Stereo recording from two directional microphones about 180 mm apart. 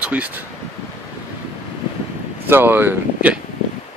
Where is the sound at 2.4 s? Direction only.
10° right (ahead or behind).